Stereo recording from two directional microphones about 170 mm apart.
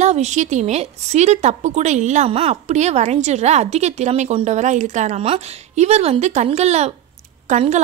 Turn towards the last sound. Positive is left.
turn(degrees=-40)  # may be behind; listen again after turning